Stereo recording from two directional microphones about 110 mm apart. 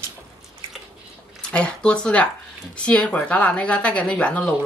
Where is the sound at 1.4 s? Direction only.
10° left (ahead or behind).